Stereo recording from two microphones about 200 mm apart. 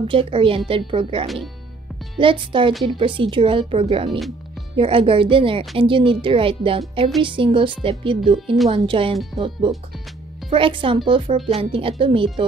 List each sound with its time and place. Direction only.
0.0 s a woman's voice: 25° right (ahead or behind)
1.2 s speech: centre (ahead or behind)
2.1 s a woman's voice: 25° right (ahead or behind)
9.1 s speech: centre (ahead or behind)
10.5 s a woman's voice: 25° right (ahead or behind)